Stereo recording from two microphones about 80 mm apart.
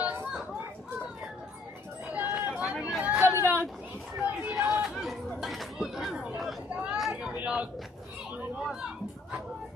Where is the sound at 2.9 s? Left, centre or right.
Centre.